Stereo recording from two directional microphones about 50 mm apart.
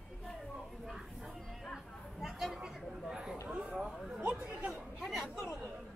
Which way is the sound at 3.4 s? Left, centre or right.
Right.